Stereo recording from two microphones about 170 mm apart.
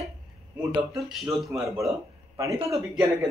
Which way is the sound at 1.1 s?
Centre (ahead or behind).